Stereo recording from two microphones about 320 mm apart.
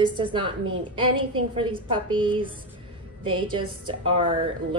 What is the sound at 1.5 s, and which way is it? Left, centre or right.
Speech, centre.